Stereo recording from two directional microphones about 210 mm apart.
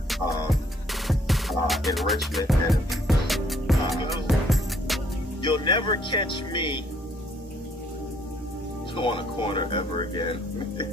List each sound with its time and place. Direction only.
1.0 s music: centre (ahead or behind)
5.4 s speech: 20° left (ahead or behind)
8.9 s speech: 25° left (ahead or behind)